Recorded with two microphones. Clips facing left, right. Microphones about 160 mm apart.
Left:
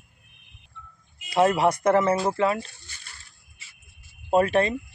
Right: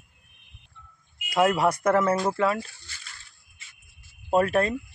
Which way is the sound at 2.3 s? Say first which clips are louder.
Left 1 dB; 10° left (ahead or behind).